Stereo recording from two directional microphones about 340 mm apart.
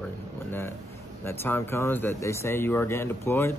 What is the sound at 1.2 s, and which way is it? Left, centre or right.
Speech, centre.